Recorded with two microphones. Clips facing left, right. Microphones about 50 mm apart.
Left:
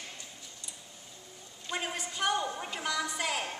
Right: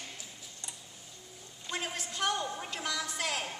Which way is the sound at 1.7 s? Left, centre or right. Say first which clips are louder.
Left 2 dB; centre.